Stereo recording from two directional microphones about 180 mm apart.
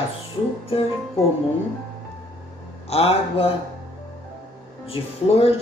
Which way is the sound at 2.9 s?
35° left (ahead or behind).